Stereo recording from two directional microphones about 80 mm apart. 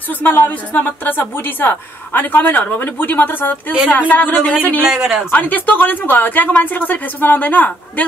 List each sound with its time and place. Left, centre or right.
0.2 s a woman's voice: left
4.9 s speech: centre
5.3 s a woman's voice: left